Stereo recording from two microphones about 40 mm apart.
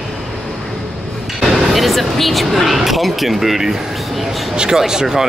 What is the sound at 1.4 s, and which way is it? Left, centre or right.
Speech, centre.